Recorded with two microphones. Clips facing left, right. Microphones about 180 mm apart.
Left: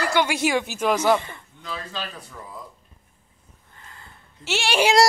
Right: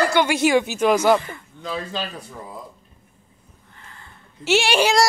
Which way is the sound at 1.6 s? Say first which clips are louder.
Right 5 dB; 20° right (ahead or behind).